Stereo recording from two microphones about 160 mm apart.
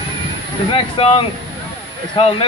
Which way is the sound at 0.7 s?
35° left (ahead or behind).